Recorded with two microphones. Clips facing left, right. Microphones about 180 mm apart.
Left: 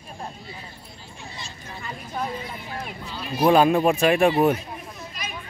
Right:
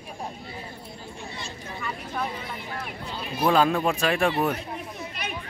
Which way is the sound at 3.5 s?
15° left (ahead or behind).